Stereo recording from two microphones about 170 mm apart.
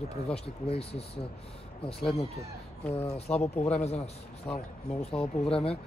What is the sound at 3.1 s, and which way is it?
Speech, 40° left (ahead or behind).